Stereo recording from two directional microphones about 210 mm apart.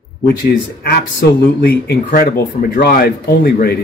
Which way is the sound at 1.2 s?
50° left (ahead or behind).